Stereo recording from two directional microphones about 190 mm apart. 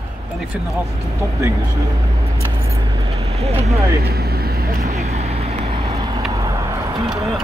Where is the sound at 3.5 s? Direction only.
35° right (ahead or behind).